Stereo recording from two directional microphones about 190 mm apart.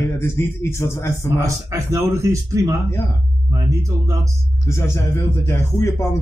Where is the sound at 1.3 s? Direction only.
15° right (ahead or behind).